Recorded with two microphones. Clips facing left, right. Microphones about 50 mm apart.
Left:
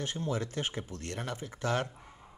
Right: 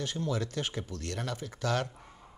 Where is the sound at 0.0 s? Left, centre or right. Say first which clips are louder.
Right 1 dB; left.